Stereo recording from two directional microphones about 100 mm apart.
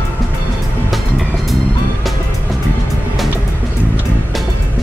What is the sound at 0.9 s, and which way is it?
Music, centre (ahead or behind).